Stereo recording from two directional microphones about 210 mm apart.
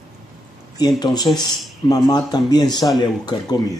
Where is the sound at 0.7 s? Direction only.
20° left (ahead or behind).